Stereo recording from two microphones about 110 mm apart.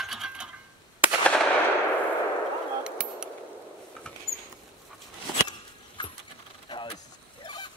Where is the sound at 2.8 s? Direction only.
10° right (ahead or behind).